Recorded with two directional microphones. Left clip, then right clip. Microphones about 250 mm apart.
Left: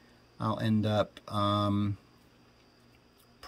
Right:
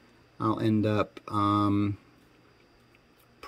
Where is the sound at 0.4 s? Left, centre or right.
Centre.